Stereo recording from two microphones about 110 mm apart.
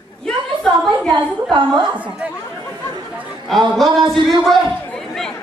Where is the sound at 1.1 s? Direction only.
45° right (ahead or behind).